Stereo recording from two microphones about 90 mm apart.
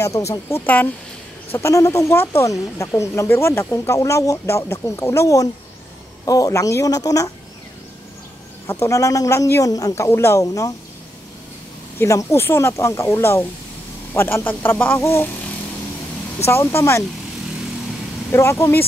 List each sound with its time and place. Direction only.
0.0 s speech: 35° left (ahead or behind)
0.6 s speech: 20° left (ahead or behind)
1.6 s speech: 35° left (ahead or behind)
8.6 s speech: 35° left (ahead or behind)
12.0 s speech: 35° left (ahead or behind)
16.4 s speech: 30° left (ahead or behind)
18.3 s speech: 30° left (ahead or behind)